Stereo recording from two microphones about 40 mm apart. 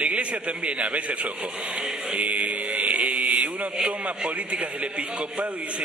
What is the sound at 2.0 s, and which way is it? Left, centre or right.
Mantra, right.